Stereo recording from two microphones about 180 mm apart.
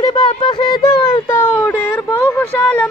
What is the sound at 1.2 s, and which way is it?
Speech, 10° left (ahead or behind).